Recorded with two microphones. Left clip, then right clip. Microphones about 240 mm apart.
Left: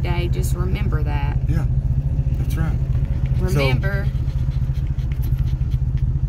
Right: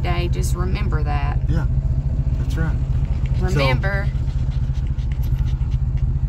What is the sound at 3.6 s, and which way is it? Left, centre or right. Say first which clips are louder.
Speech: right 2 dB; centre.